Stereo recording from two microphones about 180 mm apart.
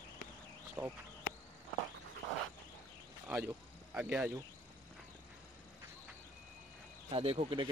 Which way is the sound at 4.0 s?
5° right (ahead or behind).